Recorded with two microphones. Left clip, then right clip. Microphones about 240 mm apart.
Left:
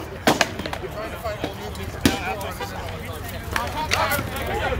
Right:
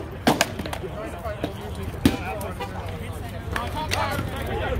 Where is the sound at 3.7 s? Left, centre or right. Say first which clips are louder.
Left 4 dB; centre.